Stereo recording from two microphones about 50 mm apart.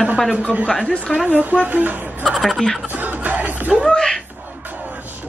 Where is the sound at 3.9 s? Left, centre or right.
Centre.